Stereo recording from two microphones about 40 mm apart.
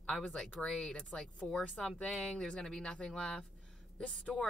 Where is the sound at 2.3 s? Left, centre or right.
Left.